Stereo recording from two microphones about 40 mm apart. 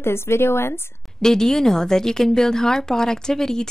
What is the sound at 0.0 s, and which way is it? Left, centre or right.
Speech, left.